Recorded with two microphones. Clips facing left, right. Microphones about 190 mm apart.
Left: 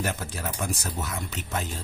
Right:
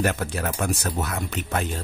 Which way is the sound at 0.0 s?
65° right (ahead or behind).